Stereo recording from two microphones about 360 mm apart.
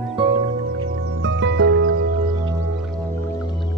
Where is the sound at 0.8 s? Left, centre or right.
Right.